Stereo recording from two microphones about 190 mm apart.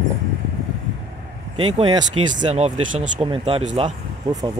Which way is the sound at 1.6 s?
25° right (ahead or behind).